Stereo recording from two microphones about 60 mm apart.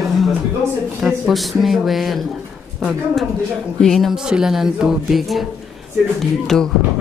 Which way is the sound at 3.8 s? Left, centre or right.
Centre.